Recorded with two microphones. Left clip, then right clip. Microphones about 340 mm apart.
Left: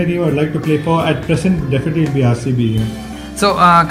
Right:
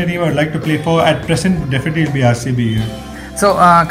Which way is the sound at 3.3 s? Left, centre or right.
Centre.